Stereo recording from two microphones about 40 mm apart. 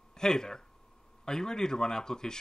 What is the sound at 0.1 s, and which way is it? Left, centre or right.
Speech, centre.